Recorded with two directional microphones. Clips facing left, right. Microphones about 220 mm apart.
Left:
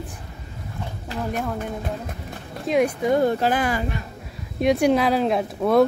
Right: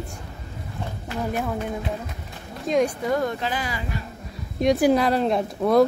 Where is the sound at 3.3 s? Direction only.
50° left (ahead or behind).